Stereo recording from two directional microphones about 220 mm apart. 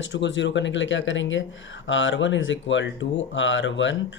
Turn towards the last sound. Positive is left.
turn(degrees=55)  # may be behind; listen again after turning